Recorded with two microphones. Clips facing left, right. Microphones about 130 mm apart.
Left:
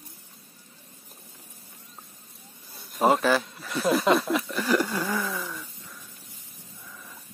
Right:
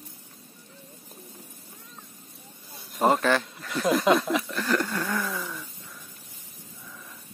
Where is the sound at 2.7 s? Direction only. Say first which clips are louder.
Left 1 dB; centre (ahead or behind).